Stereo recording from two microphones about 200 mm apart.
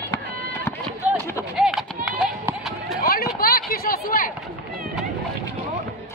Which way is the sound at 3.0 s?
50° left (ahead or behind).